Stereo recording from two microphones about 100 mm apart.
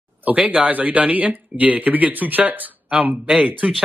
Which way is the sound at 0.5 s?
15° right (ahead or behind).